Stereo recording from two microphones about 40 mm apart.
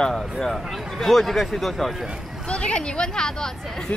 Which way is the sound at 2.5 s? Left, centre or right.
Left.